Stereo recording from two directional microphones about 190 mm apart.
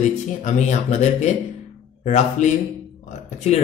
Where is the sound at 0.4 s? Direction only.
40° left (ahead or behind).